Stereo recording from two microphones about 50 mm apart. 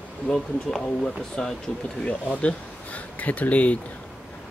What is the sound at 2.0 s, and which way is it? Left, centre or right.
Speech, left.